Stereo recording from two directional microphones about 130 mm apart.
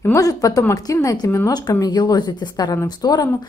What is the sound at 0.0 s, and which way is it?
Speech, 25° left (ahead or behind).